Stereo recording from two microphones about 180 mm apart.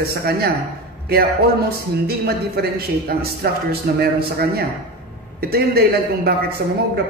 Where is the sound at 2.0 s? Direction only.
60° right (ahead or behind).